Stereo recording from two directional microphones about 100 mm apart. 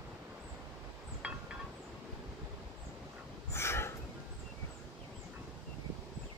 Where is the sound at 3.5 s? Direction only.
25° left (ahead or behind).